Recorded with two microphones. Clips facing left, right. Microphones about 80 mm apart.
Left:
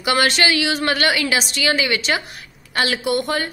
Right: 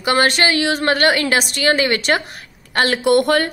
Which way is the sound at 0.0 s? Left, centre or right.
Right.